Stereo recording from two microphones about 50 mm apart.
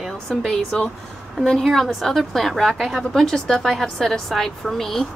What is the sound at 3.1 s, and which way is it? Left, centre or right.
Speech, centre.